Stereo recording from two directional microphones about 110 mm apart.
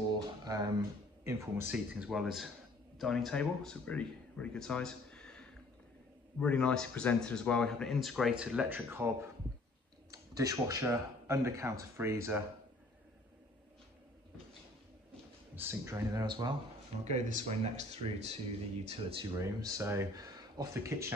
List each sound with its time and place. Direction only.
0.5 s speech: 40° right (ahead or behind)
1.2 s speech: 25° right (ahead or behind)
1.7 s speech: 5° right (ahead or behind)
8.6 s speech: 20° right (ahead or behind)
15.5 s speech: 20° right (ahead or behind)
16.1 s speech: 40° right (ahead or behind)
17.0 s speech: 90° right; by 18.3 s 75° right (ahead or behind)
18.9 s speech: 60° right (ahead or behind)
19.3 s speech: 30° right (ahead or behind)
20.2 s speech: 35° right (ahead or behind)